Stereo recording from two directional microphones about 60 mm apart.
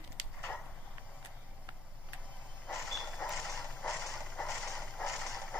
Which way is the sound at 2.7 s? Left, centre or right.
Centre.